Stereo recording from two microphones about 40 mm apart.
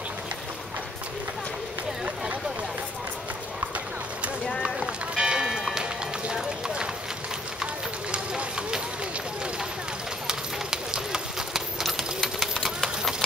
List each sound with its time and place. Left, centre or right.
4.6 s run: right
8.1 s run: right
10.2 s clip-clop: centre
12.6 s a sound: centre